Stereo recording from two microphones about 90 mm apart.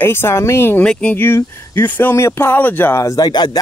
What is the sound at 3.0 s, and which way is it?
Speech, 35° left (ahead or behind).